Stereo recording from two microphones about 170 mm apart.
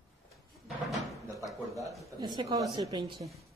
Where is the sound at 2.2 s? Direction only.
25° right (ahead or behind).